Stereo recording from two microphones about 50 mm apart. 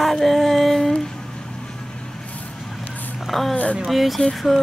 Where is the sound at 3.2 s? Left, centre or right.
Centre.